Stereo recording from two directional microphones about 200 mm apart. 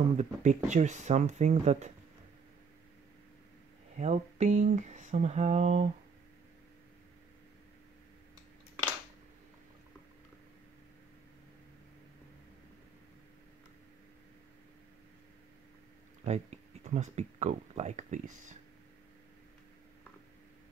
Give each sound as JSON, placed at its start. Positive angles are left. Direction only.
{"t": 0.2, "sound": "speech", "side_deg": -35}
{"t": 4.0, "sound": "speech", "side_deg": -35}
{"t": 16.3, "sound": "speech", "side_deg": -35}